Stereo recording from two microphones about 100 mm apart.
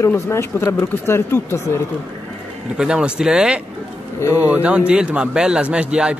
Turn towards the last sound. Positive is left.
turn(degrees=-10)  # may be behind; listen again after turning